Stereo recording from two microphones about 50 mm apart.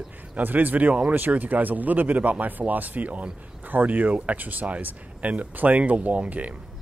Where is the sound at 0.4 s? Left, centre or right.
Right.